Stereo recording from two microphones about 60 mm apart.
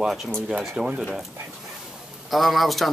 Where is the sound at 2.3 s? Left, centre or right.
Centre.